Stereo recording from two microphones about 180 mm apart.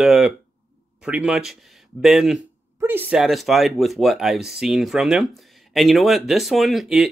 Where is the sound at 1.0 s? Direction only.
5° right (ahead or behind).